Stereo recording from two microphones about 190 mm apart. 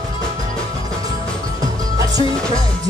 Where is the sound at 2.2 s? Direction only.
30° left (ahead or behind).